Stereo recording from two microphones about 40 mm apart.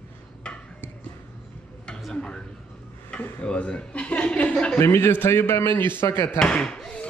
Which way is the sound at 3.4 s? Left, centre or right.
Left.